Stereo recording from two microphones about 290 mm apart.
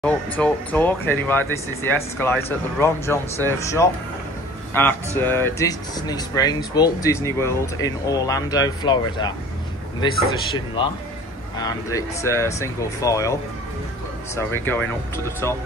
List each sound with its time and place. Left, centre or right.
0.0 s speech: centre